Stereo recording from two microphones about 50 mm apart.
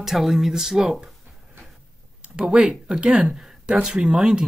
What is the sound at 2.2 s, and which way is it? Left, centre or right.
Speech, centre.